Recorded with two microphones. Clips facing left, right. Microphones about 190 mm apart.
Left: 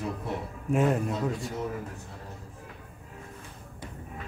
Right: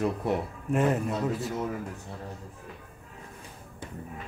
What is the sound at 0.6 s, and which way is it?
Speech, centre (ahead or behind).